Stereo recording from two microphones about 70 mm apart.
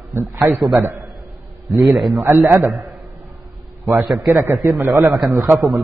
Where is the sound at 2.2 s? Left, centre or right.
Right.